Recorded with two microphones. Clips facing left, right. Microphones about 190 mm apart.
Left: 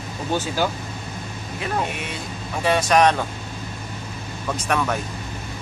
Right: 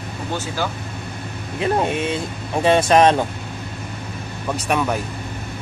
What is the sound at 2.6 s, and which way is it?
Speech, 25° right (ahead or behind).